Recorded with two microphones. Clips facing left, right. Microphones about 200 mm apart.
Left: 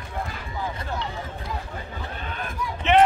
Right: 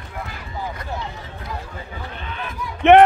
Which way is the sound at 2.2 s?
45° left (ahead or behind).